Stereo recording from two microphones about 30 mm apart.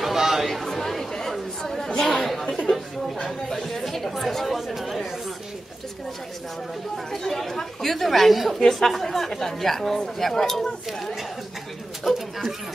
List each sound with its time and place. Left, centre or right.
0.0 s chatter: centre
0.5 s chatter: centre
3.9 s chatter: centre
7.1 s speech: centre
12.1 s pigeon: centre